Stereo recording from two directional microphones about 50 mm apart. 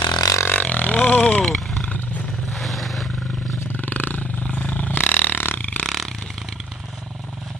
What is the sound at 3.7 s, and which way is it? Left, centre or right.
Burping, left.